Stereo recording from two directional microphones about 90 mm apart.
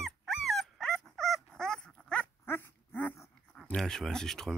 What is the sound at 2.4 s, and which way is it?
Dog, 25° left (ahead or behind).